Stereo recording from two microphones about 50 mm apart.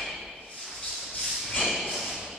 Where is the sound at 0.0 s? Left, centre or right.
Centre.